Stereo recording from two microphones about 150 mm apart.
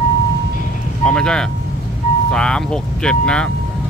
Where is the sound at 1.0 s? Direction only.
5° left (ahead or behind).